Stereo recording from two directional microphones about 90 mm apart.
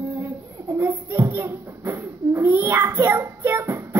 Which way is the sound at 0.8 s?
25° right (ahead or behind).